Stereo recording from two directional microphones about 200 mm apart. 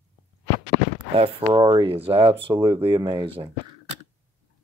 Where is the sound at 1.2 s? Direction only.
25° right (ahead or behind).